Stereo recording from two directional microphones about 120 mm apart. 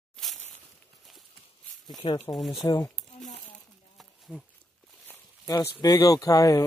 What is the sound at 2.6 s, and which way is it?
Speech, 30° left (ahead or behind).